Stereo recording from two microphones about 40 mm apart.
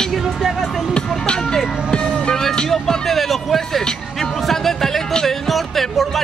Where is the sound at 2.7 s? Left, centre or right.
Centre.